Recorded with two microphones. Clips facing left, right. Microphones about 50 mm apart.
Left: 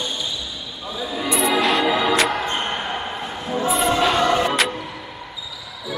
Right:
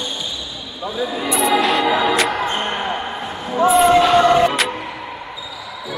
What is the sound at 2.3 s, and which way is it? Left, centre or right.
Basketball bounce, centre.